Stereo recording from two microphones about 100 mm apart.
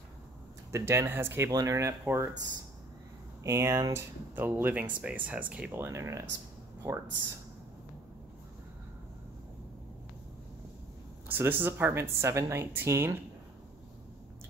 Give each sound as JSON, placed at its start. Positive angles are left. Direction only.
{"t": 0.7, "sound": "speech", "side_deg": -30}
{"t": 1.5, "sound": "speech", "side_deg": -35}
{"t": 3.4, "sound": "speech", "side_deg": -30}
{"t": 5.7, "sound": "speech", "side_deg": -25}
{"t": 11.2, "sound": "speech", "side_deg": -20}